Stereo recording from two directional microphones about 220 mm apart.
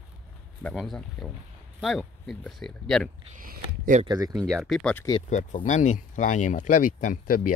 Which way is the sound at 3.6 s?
35° right (ahead or behind).